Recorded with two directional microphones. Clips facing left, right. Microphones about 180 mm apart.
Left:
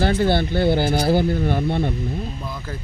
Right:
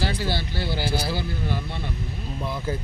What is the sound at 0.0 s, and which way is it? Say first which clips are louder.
Speech: left 9 dB; 55° left (ahead or behind).